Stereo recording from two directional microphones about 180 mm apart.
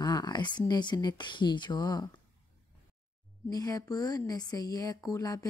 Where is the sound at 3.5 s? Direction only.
20° left (ahead or behind).